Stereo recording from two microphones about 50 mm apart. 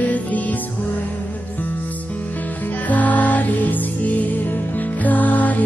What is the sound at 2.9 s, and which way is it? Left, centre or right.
Music, left.